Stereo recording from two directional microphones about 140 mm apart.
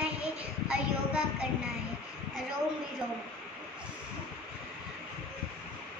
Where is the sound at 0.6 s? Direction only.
5° right (ahead or behind).